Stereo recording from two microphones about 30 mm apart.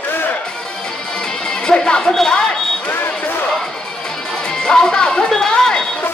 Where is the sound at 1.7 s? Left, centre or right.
Left.